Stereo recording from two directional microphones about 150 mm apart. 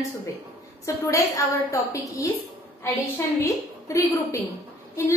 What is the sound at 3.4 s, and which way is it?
A woman's voice, 20° left (ahead or behind).